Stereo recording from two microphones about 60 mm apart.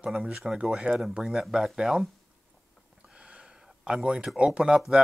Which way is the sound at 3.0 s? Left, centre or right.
Centre.